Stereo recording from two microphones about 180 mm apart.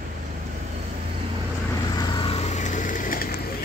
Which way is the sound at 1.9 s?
25° left (ahead or behind).